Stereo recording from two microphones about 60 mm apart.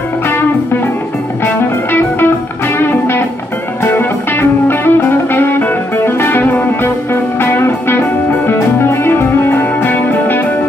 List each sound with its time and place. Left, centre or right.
1.4 s music: left